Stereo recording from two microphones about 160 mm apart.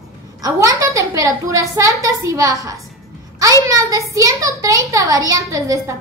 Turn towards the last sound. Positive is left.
turn(degrees=-20)  # may be behind; listen again after turning